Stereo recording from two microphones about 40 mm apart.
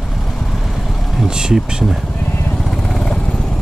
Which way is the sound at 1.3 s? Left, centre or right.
Centre.